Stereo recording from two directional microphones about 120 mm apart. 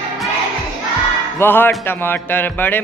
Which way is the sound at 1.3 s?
15° left (ahead or behind).